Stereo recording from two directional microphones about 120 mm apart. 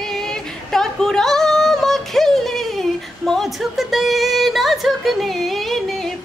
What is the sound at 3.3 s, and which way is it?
Music, centre (ahead or behind).